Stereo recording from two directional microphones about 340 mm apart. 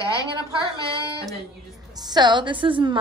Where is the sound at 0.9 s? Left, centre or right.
Centre.